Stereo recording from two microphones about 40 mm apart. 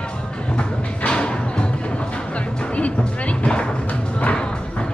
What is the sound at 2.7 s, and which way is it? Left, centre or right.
Music, left.